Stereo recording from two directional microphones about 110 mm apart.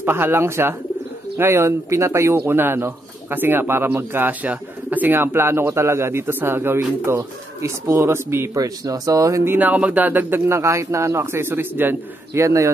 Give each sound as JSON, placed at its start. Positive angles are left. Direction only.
{"t": 0.0, "sound": "speech", "side_deg": -20}